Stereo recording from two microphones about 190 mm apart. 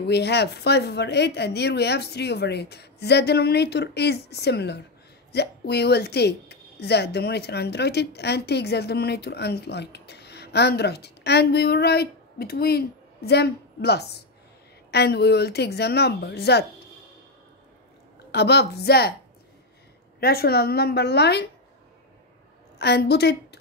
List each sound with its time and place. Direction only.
0.0 s speech: 60° left (ahead or behind)
18.3 s speech: 60° left (ahead or behind)
20.2 s speech: 55° left (ahead or behind)
22.8 s a woman's voice: 60° left (ahead or behind)